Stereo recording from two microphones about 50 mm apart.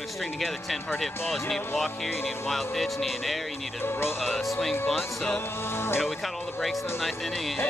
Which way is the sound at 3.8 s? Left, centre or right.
Left.